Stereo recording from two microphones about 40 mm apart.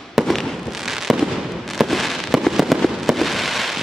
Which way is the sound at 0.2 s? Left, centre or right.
Centre.